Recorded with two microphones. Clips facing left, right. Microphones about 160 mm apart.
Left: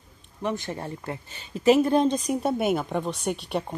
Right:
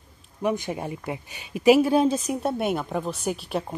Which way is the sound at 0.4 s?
10° right (ahead or behind).